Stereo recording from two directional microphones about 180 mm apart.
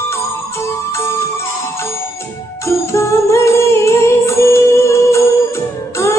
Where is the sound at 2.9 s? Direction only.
15° left (ahead or behind).